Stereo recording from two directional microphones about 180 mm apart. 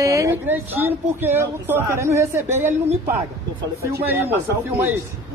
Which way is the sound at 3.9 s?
10° right (ahead or behind).